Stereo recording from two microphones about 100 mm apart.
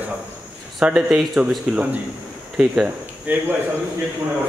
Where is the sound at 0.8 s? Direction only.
10° right (ahead or behind).